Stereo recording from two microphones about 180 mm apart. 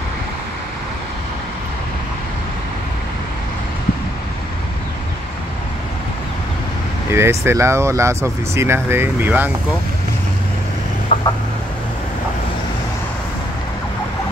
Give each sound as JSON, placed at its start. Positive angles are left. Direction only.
{"t": 7.1, "sound": "speech", "side_deg": -15}
{"t": 11.1, "sound": "chicken", "side_deg": 35}